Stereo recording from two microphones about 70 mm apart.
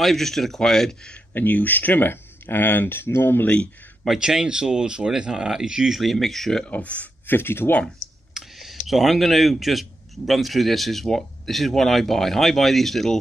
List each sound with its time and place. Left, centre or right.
0.0 s speech: centre
1.3 s speech: left
4.0 s speech: centre
6.6 s speech: centre
8.4 s speech: centre